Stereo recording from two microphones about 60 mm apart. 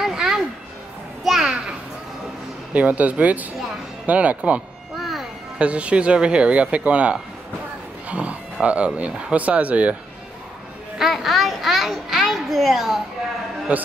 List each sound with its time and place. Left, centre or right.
0.0 s a sound: centre
1.3 s children playing: centre
2.7 s speech: right
4.9 s music: centre
5.6 s speech: right
8.1 s a sound: right
8.6 s speech: right
11.0 s a child's voice: centre
13.7 s speech: right